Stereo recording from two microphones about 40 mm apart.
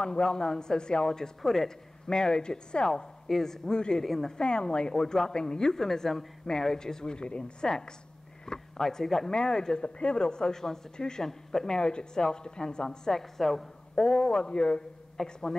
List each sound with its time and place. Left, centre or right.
0.0 s speech: left
2.0 s speech: centre
3.3 s speech: centre
4.0 s speech: centre
4.3 s speech: left
15.2 s speech: centre